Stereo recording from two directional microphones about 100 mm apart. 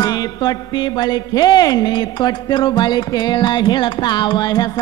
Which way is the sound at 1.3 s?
40° left (ahead or behind).